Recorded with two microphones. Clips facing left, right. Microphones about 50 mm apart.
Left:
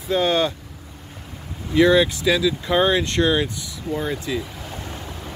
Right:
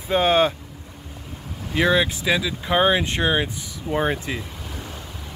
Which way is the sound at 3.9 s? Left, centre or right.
Right.